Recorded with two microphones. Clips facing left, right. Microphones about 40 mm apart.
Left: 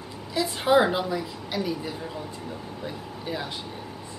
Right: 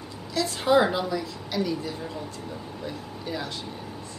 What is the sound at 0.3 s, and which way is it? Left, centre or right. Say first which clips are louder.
A woman's voice: even; centre.